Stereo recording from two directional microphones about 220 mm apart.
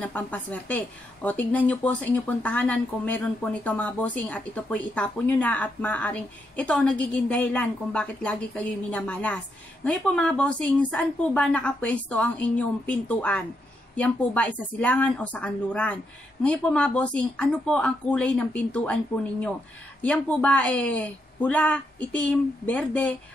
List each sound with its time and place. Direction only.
0.0 s a woman's voice: 5° left (ahead or behind)
20.0 s a woman's voice: 5° left (ahead or behind)